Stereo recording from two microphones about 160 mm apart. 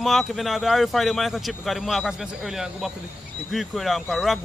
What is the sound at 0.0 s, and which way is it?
Speech, centre (ahead or behind).